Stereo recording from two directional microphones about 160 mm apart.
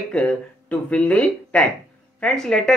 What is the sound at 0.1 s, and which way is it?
Speech, 5° left (ahead or behind).